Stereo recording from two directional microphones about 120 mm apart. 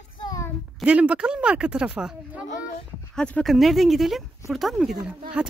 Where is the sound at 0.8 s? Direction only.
10° right (ahead or behind).